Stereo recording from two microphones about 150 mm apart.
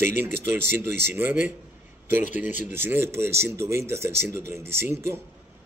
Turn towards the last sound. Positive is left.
turn(degrees=-15)  # may be behind; listen again after turning